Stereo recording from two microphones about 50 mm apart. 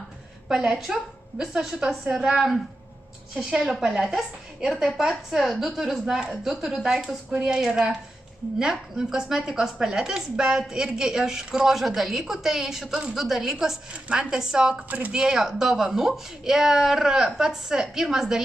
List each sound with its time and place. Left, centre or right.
0.7 s a woman's voice: centre
14.9 s speech: right
15.1 s speech: centre